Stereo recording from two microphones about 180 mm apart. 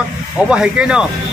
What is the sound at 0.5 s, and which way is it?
Speech, 5° right (ahead or behind).